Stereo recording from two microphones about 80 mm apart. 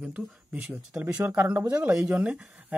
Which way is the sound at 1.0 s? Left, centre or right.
Right.